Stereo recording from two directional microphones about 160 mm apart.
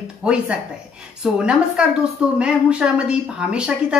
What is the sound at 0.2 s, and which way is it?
A woman's voice, 5° right (ahead or behind).